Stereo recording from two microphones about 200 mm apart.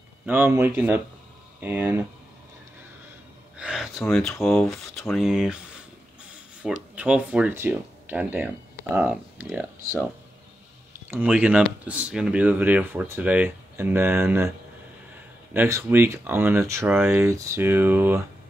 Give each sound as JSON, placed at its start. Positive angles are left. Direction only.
{"t": 0.3, "sound": "speech", "side_deg": -10}
{"t": 3.5, "sound": "gasp", "side_deg": -5}
{"t": 4.0, "sound": "speech", "side_deg": 0}
{"t": 6.6, "sound": "speech", "side_deg": -5}
{"t": 11.1, "sound": "speech", "side_deg": -10}
{"t": 15.5, "sound": "speech", "side_deg": -10}